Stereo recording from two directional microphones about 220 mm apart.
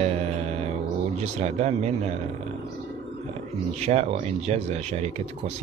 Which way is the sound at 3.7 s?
30° right (ahead or behind).